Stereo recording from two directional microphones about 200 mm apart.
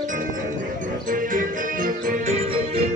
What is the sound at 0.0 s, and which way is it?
Music, 40° right (ahead or behind).